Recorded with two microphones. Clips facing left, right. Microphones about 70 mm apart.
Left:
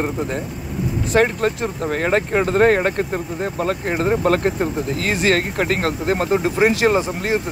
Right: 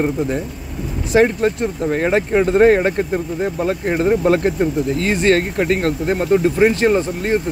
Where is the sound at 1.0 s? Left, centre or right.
Centre.